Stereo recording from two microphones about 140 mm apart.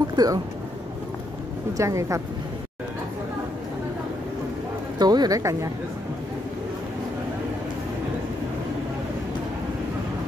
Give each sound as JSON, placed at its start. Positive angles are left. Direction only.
{"t": 0.0, "sound": "a sound", "side_deg": -30}
{"t": 1.8, "sound": "speech", "side_deg": -20}
{"t": 4.9, "sound": "speech", "side_deg": -30}